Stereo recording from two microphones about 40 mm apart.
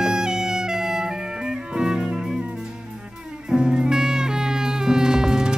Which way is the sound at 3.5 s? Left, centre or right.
Centre.